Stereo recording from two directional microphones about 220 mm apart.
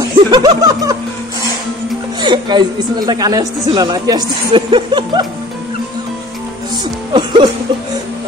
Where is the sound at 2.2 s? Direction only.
20° right (ahead or behind).